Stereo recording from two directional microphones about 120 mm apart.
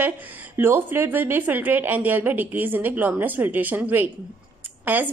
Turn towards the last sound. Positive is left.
turn(degrees=-15)  # may be behind; listen again after turning